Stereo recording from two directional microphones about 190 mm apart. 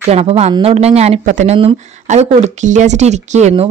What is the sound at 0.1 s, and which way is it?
Speech, 35° right (ahead or behind).